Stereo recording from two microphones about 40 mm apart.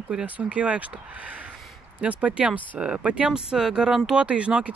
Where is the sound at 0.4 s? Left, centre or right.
Right; by 4.0 s centre.